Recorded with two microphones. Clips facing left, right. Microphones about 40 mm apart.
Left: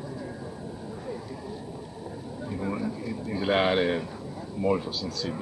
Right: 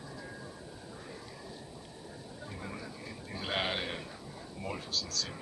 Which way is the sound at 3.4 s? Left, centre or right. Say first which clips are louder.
Left 11 dB; centre.